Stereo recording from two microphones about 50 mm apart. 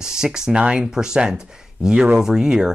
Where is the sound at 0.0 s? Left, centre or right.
Centre.